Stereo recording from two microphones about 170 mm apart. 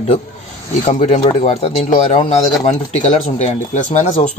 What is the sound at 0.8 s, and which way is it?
Speech, 45° left (ahead or behind).